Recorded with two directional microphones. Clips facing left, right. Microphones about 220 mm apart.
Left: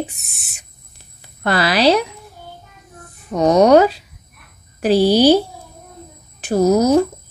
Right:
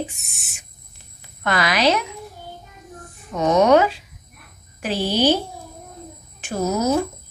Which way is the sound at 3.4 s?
35° left (ahead or behind).